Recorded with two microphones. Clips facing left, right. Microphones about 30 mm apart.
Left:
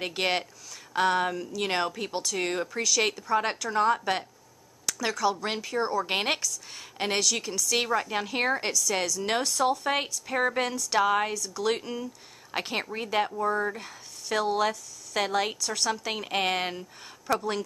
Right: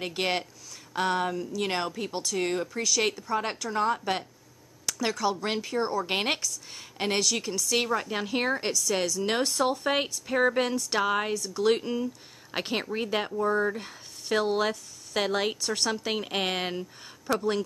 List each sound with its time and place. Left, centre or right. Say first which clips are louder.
0.0 s speech: left 1 dB; centre
4.8 s speech: left 1 dB; centre
7.8 s speech: left 1 dB; centre
9.4 s speech: left 1 dB; centre
11.3 s speech: right 3 dB; centre
11.6 s speech: right 4 dB; centre
16.1 s speech: left 1 dB; centre